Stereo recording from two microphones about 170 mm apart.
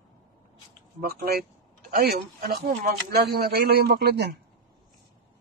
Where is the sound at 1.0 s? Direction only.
65° right (ahead or behind).